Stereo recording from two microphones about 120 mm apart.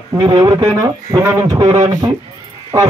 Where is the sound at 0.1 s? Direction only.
25° right (ahead or behind).